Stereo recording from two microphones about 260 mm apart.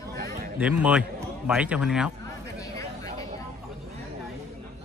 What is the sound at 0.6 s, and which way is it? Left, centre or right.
A man's voice, centre.